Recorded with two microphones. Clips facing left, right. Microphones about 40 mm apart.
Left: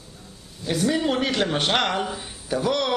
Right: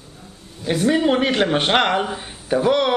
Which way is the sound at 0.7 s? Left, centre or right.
Right.